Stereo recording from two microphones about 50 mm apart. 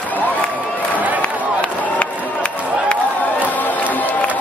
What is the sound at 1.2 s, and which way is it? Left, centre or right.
Run, left.